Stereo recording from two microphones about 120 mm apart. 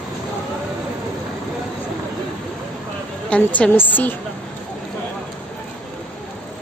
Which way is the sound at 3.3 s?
10° left (ahead or behind).